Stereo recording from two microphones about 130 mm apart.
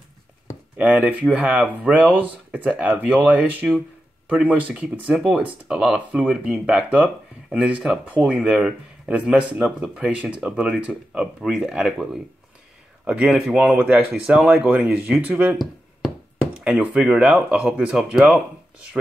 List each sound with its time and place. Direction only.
0.7 s speech: 10° right (ahead or behind)